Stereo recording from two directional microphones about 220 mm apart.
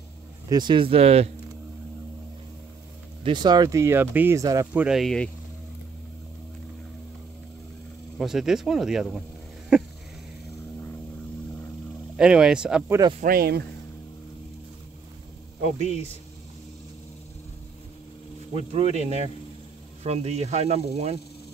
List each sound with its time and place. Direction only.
0.5 s speech: 20° right (ahead or behind)
3.3 s speech: 20° right (ahead or behind)
4.8 s speech: centre (ahead or behind)
8.2 s speech: centre (ahead or behind)
9.7 s a sound: 5° right (ahead or behind)
12.2 s speech: 5° right (ahead or behind)
13.2 s speech: 45° right (ahead or behind)
15.6 s a man's voice: 30° right (ahead or behind)
18.5 s speech: 25° right (ahead or behind)